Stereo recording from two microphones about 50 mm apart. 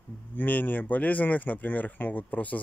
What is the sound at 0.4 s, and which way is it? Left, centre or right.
A man's voice, left.